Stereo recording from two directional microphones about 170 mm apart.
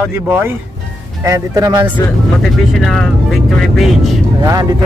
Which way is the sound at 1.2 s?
20° right (ahead or behind).